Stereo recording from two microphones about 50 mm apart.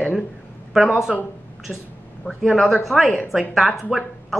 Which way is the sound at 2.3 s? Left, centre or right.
Left.